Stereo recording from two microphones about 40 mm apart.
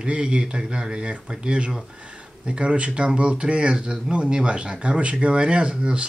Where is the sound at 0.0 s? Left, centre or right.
Right.